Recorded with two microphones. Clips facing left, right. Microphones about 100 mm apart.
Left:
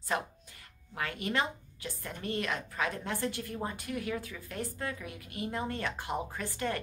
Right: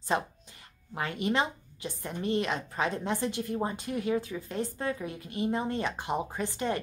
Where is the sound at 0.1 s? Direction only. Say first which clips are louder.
Right 4 dB; 25° right (ahead or behind).